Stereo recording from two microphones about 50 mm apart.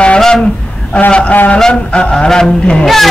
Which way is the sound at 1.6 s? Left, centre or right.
Centre.